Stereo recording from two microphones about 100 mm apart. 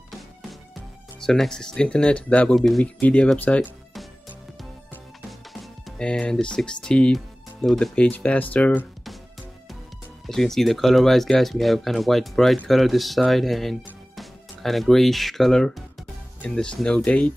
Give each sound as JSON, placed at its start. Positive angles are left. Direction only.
{"t": 1.2, "sound": "speech", "side_deg": 5}
{"t": 2.5, "sound": "speech", "side_deg": 0}
{"t": 2.8, "sound": "speech", "side_deg": 15}
{"t": 5.5, "sound": "music", "side_deg": 0}
{"t": 6.0, "sound": "speech", "side_deg": 10}
{"t": 7.9, "sound": "speech", "side_deg": 15}
{"t": 10.2, "sound": "speech", "side_deg": 5}